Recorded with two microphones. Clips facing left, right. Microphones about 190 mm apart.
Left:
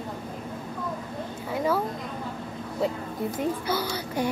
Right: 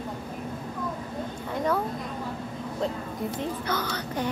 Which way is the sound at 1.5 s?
5° left (ahead or behind).